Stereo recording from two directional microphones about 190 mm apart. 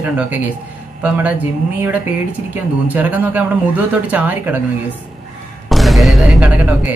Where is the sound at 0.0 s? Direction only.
10° right (ahead or behind).